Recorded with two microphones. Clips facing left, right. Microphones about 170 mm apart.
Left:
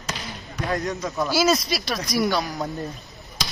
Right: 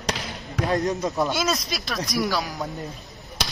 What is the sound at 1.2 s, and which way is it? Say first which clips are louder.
Speech: left 8 dB; centre (ahead or behind).